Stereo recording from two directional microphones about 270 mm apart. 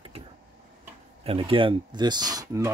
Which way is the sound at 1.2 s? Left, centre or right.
Centre.